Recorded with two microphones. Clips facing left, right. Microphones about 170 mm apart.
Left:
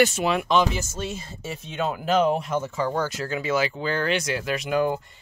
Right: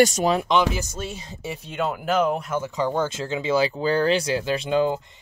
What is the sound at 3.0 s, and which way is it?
Speech, 25° right (ahead or behind).